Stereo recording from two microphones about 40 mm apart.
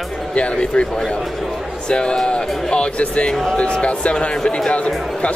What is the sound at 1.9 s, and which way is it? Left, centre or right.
Speech, left.